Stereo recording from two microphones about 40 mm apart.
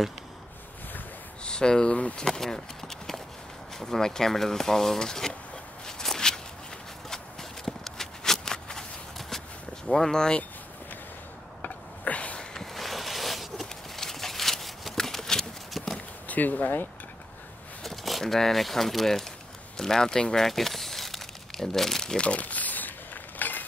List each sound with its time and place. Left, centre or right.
1.4 s speech: left
5.9 s walk: centre
7.6 s walk: centre
9.8 s speech: centre
11.6 s a sound: left
12.5 s a sound: centre
16.3 s speech: left
17.8 s a sound: centre
18.2 s speech: centre
20.4 s crumpling: centre
22.0 s crumpling: left
23.4 s a sound: left